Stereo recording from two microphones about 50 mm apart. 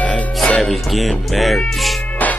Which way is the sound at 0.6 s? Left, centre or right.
Centre.